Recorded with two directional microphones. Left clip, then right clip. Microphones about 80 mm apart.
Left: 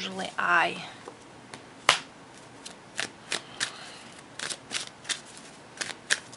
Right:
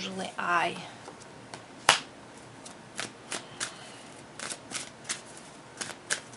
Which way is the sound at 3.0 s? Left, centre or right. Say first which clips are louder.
Left 5 dB; centre.